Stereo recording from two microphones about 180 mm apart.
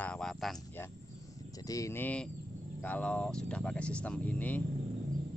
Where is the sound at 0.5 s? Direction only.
15° left (ahead or behind).